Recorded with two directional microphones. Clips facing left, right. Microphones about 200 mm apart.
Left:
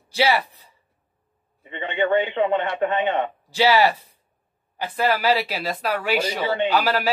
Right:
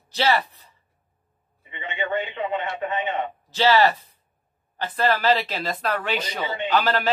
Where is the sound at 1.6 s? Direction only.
60° left (ahead or behind).